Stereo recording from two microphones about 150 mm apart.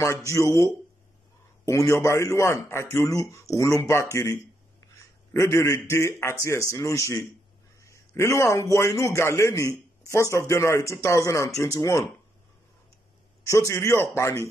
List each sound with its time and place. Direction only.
0.3 s speech: 20° left (ahead or behind)
1.7 s speech: 20° left (ahead or behind)
13.5 s speech: 20° left (ahead or behind)